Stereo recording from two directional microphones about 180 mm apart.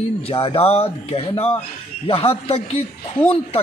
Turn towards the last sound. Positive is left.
turn(degrees=30)  # may be behind; listen again after turning